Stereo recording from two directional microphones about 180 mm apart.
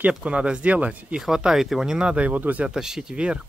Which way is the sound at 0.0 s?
5° right (ahead or behind).